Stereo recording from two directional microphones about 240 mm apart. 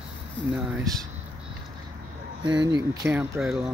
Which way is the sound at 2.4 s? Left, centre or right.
Centre.